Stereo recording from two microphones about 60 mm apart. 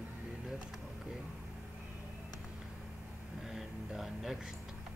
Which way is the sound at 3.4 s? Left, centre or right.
Centre.